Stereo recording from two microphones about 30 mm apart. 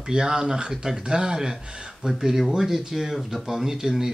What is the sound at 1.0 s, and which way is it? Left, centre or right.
Speech, right.